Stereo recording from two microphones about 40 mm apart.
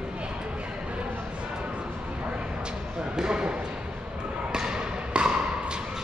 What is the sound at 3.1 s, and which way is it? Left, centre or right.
Speech, centre.